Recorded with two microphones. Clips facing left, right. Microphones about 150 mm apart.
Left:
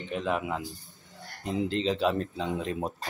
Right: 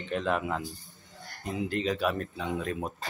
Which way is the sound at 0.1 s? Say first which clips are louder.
Right 1 dB; 10° left (ahead or behind).